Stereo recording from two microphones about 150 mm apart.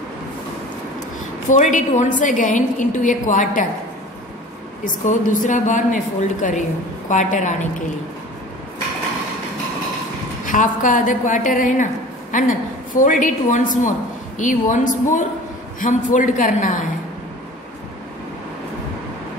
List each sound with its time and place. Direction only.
1.5 s a woman's voice: 55° left (ahead or behind)
4.8 s a woman's voice: 60° left (ahead or behind)
10.4 s a woman's voice: 60° left (ahead or behind)